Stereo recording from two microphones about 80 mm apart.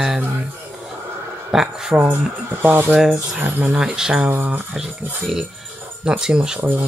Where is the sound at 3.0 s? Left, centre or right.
Centre.